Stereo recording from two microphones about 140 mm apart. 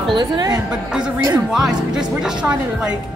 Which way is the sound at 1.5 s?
5° right (ahead or behind).